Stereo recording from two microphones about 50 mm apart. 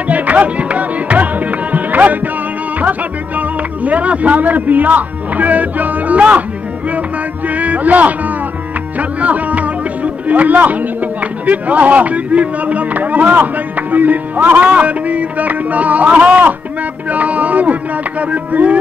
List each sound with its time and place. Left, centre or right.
0.1 s music: right
2.8 s speech: right
7.4 s speech: right
9.2 s speech: right
18.3 s music: right